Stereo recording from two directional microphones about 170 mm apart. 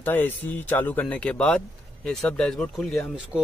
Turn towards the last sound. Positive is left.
turn(degrees=0)  # may be behind; listen again after turning